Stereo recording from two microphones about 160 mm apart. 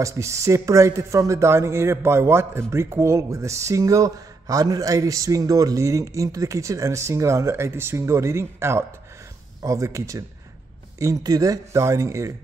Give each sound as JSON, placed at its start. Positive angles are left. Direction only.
{"t": 0.0, "sound": "speech", "side_deg": -20}